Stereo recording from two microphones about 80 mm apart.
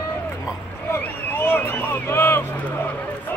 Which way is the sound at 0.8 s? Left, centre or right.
Left.